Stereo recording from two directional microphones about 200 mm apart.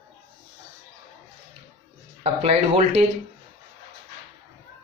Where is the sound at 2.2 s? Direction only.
30° right (ahead or behind).